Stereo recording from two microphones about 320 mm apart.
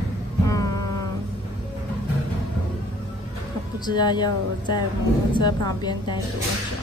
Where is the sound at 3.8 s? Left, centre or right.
Centre.